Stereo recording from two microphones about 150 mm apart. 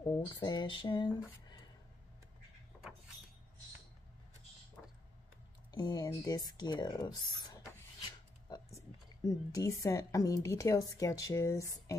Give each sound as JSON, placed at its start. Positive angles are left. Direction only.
{"t": 0.3, "sound": "speech", "side_deg": 30}
{"t": 2.7, "sound": "sliding door", "side_deg": 10}
{"t": 5.7, "sound": "speech", "side_deg": 25}
{"t": 8.5, "sound": "a sound", "side_deg": 25}
{"t": 9.2, "sound": "speech", "side_deg": 25}